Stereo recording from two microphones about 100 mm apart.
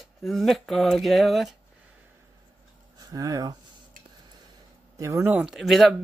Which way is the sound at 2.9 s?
35° right (ahead or behind).